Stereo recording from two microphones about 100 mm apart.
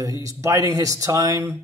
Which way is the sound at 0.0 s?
35° right (ahead or behind).